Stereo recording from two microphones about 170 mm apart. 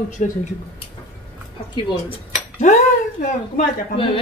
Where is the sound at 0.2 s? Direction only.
40° left (ahead or behind).